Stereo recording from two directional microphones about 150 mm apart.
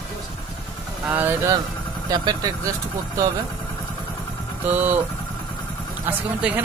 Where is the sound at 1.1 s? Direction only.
15° right (ahead or behind).